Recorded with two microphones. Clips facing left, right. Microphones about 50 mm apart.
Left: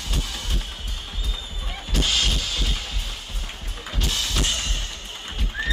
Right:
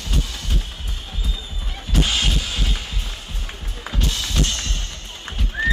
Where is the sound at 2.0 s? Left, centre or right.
Right.